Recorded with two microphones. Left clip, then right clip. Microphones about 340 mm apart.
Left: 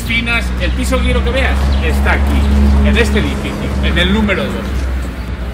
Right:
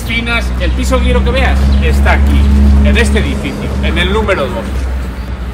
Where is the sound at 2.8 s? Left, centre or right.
Right.